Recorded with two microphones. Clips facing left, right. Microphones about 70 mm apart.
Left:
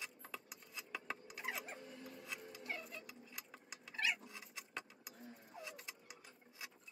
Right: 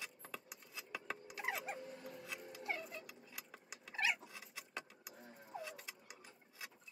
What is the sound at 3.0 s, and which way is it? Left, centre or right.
Vehicle, centre.